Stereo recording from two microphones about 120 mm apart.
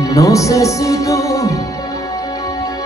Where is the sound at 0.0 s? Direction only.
30° left (ahead or behind).